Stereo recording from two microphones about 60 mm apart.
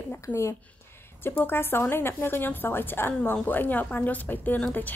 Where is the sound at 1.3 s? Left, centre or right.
Left.